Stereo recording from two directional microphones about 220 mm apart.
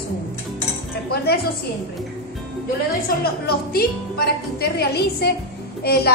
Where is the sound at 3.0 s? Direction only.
45° left (ahead or behind).